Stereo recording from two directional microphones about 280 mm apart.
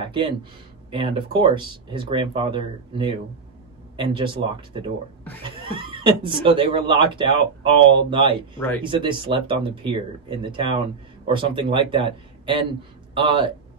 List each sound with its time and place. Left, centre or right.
0.0 s speech: centre
8.5 s speech: centre
8.8 s speech: centre